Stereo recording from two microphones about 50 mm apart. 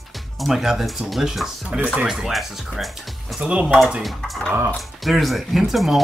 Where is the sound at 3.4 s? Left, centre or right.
Right.